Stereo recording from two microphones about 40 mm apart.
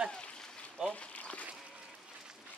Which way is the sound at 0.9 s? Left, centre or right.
Left.